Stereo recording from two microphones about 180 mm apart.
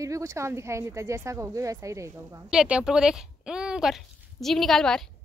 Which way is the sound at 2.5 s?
5° right (ahead or behind).